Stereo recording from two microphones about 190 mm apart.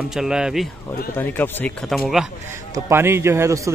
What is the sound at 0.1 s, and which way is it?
Speech, 5° right (ahead or behind).